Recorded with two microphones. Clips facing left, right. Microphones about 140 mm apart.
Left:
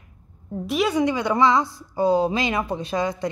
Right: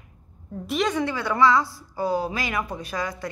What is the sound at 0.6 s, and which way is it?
A woman's voice, 5° left (ahead or behind).